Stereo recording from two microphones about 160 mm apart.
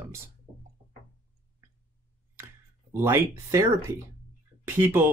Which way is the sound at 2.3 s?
15° right (ahead or behind).